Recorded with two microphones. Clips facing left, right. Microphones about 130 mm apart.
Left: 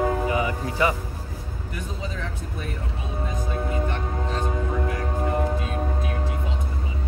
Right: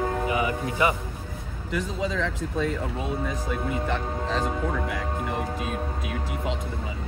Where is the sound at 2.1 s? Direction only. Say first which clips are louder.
Right 5 dB; 90° right.